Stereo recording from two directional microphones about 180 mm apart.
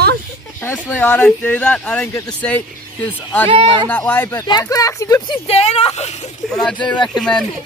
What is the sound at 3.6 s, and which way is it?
Speech, 10° left (ahead or behind).